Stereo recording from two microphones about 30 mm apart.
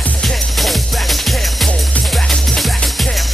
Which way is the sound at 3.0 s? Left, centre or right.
Centre.